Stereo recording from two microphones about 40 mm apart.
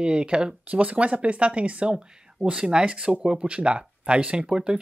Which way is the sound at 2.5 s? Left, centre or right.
Right.